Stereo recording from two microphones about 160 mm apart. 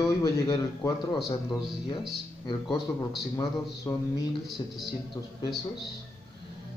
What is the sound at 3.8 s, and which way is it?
Speech, 25° left (ahead or behind).